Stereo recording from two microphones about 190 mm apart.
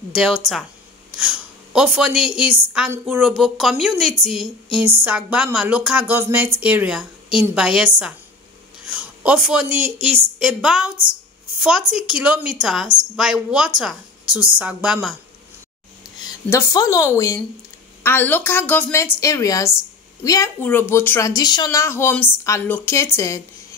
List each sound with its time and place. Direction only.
0.1 s a woman's voice: 5° right (ahead or behind)
8.8 s a sound: 5° right (ahead or behind)
9.8 s speech: 40° right (ahead or behind)
10.0 s a woman's voice: centre (ahead or behind)
16.0 s speech: 15° left (ahead or behind)